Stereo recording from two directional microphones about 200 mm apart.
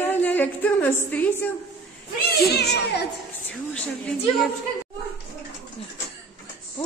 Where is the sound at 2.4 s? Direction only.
55° left (ahead or behind).